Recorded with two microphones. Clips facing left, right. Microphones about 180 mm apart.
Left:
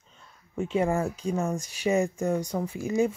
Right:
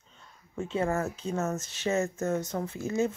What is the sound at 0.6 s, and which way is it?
Speech, 10° left (ahead or behind).